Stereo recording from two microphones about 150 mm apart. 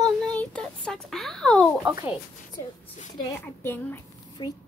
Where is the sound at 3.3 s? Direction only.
15° left (ahead or behind).